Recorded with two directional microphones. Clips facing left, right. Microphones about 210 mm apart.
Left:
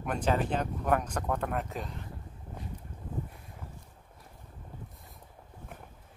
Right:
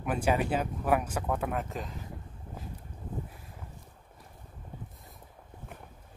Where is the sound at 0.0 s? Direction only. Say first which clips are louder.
Right 1 dB; 5° right (ahead or behind).